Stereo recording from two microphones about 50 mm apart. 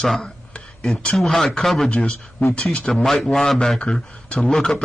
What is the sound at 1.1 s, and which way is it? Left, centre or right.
Speech, centre.